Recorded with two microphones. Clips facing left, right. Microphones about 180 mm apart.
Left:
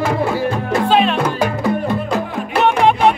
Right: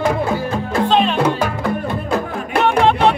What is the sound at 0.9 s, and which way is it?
Music, 5° left (ahead or behind).